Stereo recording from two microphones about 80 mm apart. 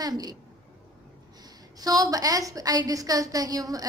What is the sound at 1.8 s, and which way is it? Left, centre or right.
A woman's voice, right.